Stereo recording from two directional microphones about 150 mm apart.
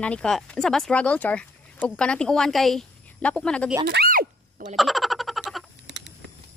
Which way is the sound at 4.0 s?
80° right.